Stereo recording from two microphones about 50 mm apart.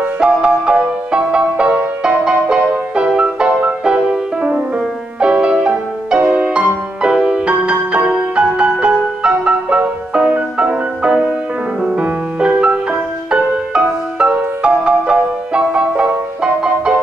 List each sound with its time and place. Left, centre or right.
0.2 s music: right